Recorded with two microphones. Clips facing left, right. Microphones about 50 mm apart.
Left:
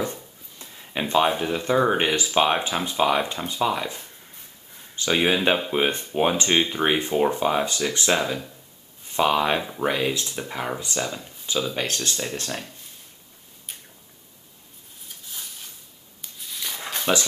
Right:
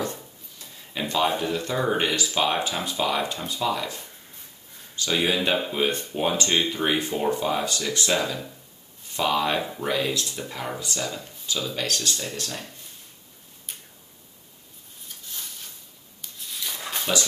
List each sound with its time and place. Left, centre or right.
0.0 s speech: left
13.7 s tick-tock: centre
16.2 s a sound: centre
17.1 s speech: left